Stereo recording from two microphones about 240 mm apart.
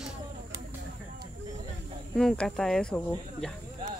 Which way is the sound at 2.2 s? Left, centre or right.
Centre.